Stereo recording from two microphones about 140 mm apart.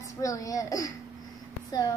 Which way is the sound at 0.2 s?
25° left (ahead or behind).